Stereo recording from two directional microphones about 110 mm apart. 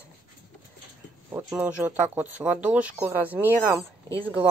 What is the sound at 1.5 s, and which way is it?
Speech, 10° right (ahead or behind).